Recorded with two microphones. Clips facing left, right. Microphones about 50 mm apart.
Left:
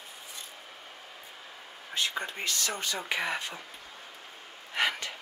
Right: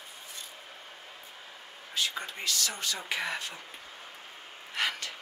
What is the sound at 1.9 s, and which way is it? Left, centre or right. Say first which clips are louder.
Speech: left 1 dB; left.